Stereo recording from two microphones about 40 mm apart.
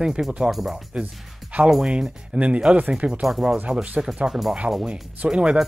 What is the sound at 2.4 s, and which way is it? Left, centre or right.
Speech, right.